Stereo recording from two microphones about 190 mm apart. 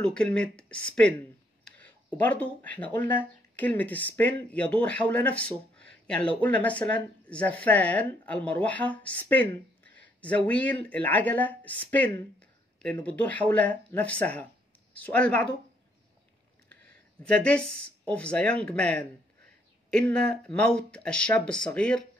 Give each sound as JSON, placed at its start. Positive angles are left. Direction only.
{"t": 0.0, "sound": "speech", "side_deg": 5}
{"t": 2.1, "sound": "speech", "side_deg": 10}
{"t": 17.2, "sound": "speech", "side_deg": 5}